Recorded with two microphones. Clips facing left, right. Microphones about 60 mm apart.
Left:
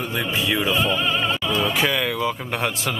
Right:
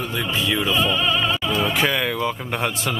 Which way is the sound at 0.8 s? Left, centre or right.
Left.